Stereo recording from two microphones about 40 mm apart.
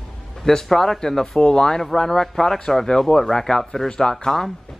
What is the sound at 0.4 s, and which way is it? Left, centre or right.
Speech, centre.